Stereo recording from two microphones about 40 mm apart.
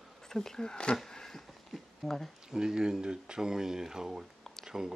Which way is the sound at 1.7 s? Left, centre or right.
Centre.